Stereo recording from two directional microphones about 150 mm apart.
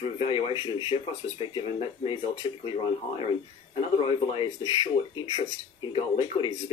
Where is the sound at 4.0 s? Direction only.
35° left (ahead or behind).